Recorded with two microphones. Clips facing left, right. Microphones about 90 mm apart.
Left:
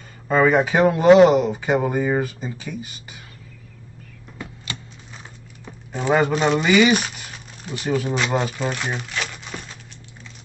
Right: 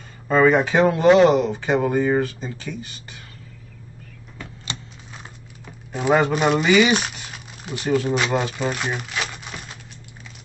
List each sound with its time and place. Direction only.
0.3 s speech: centre (ahead or behind)
5.9 s speech: 5° right (ahead or behind)
8.8 s crumpling: 5° right (ahead or behind)